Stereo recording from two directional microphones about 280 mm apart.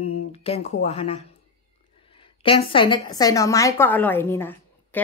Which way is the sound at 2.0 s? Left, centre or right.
Centre.